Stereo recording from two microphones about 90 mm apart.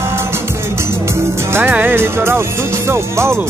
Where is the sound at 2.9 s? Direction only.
30° right (ahead or behind).